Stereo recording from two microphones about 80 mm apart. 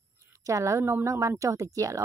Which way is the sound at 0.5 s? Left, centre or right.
Right.